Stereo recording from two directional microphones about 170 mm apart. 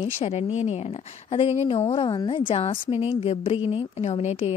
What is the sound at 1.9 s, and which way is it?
A woman's voice, 25° left (ahead or behind).